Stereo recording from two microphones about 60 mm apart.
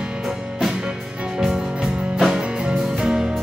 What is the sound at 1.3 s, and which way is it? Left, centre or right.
Music, centre.